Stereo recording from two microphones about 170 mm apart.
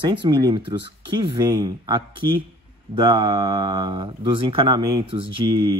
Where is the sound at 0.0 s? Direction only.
30° right (ahead or behind).